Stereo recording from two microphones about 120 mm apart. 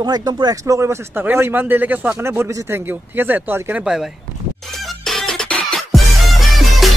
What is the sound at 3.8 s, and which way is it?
Speech, 5° right (ahead or behind).